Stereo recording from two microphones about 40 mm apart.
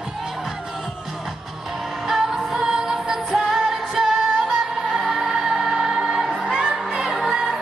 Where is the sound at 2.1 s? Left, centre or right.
Centre.